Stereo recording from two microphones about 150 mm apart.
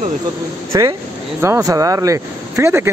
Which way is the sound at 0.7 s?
25° right (ahead or behind).